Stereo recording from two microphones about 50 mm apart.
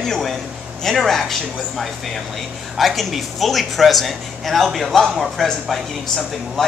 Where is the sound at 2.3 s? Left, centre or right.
Centre.